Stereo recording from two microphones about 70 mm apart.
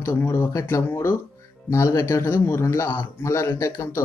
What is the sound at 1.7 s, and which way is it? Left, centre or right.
A man's voice, left.